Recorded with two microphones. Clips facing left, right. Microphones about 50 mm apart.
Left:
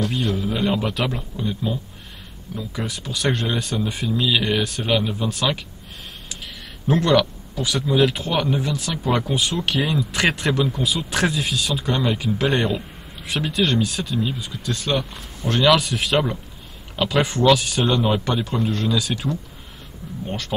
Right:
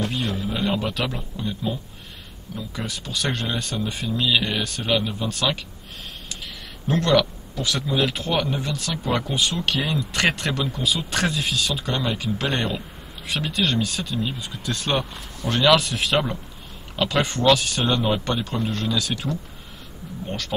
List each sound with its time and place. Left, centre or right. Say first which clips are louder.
0.5 s speech: left 2 dB; centre
6.9 s speech: left 2 dB; centre
14.7 s speech: left 1 dB; right
15.1 s speech: left 2 dB; centre